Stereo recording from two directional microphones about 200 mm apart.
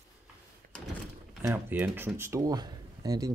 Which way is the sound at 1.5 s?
10° right (ahead or behind).